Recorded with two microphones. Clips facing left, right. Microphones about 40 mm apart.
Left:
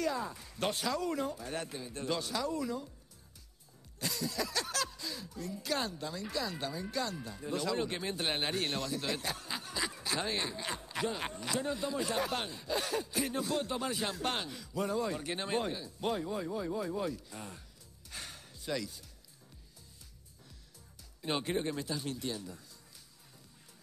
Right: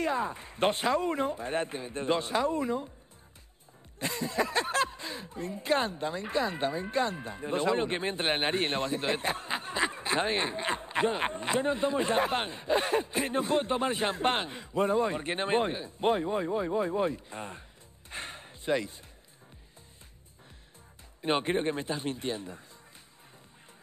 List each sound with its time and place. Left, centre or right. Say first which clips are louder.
0.0 s speech: right 5 dB; right
4.0 s speech: right 6 dB; right
18.1 s a sound: right 6 dB; right
21.2 s speech: right 6 dB; right